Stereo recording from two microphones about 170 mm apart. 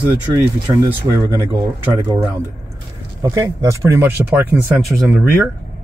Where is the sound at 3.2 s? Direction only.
20° right (ahead or behind); by 5.3 s 5° right (ahead or behind).